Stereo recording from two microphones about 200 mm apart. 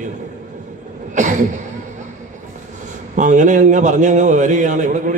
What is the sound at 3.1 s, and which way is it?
A man's voice, 40° right (ahead or behind).